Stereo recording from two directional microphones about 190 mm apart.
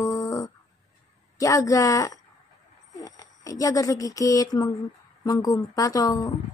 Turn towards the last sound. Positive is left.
turn(degrees=20)  # may be behind; listen again after turning